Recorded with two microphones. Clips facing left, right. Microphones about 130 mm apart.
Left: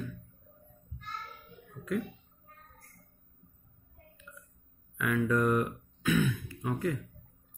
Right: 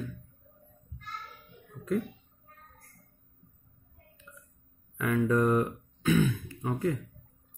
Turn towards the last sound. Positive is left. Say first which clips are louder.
# right 2 dB
turn(degrees=-25)  # may be behind; listen again after turning